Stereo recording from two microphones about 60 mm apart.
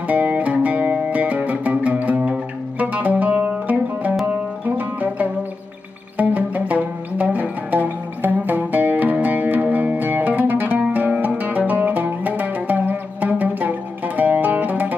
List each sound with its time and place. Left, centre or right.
0.0 s music: right